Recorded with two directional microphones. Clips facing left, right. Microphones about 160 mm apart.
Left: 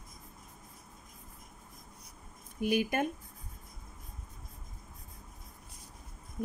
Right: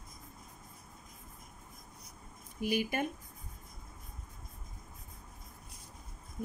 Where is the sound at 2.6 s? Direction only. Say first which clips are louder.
Left 3 dB; 50° left (ahead or behind).